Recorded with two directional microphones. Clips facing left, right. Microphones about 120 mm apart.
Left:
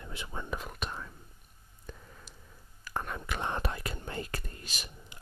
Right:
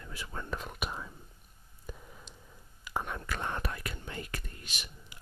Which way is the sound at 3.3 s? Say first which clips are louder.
Left 2 dB; 20° left (ahead or behind).